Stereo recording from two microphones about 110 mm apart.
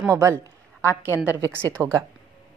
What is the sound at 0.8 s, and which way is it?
Speech, 20° left (ahead or behind).